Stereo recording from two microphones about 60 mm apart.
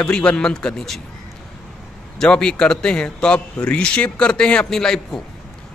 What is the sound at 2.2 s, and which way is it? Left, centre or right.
A man's voice, centre.